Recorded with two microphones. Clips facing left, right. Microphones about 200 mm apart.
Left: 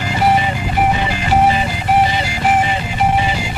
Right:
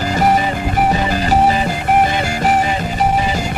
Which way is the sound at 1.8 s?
50° right (ahead or behind).